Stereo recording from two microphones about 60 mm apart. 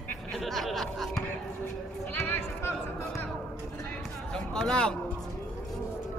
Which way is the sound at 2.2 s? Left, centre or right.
Left.